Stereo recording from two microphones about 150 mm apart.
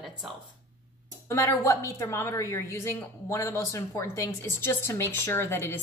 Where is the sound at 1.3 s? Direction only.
20° left (ahead or behind).